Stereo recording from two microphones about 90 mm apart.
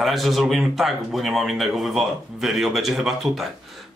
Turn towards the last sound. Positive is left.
turn(degrees=-5)  # may be behind; listen again after turning